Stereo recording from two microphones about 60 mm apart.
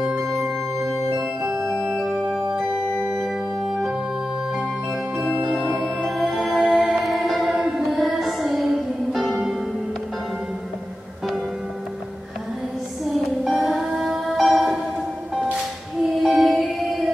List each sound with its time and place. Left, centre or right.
1.8 s music: centre
2.5 s organ: centre
6.1 s music: centre
7.1 s music: centre
13.0 s music: centre
16.2 s music: centre